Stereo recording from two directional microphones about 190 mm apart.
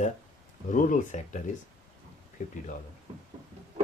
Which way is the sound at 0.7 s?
45° left (ahead or behind).